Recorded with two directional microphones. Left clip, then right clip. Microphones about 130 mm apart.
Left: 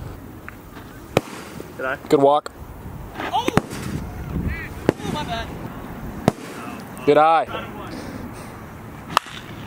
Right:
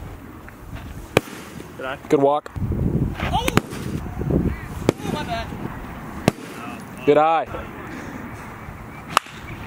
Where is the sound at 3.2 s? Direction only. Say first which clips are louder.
Left 3 dB; 5° right (ahead or behind).